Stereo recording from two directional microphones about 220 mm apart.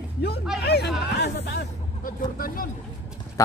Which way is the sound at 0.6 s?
50° left (ahead or behind).